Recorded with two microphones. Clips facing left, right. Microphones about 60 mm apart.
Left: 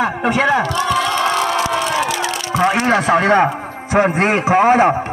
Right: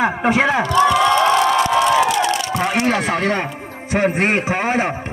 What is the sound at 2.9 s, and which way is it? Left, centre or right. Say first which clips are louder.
Speech: left 5 dB; left.